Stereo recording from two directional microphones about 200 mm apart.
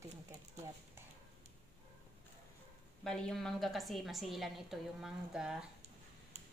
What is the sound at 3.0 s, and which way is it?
A woman's voice, 5° left (ahead or behind).